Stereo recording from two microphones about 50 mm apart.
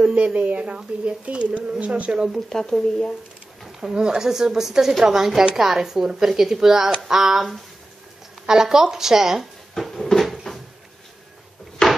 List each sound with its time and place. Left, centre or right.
0.0 s speech: right
2.5 s speech: centre
3.9 s a woman's voice: centre
8.5 s a woman's voice: centre
9.8 s cupboard open or close: centre
11.8 s door: centre